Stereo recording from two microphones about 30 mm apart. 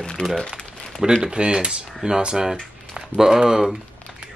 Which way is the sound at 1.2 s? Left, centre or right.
Right.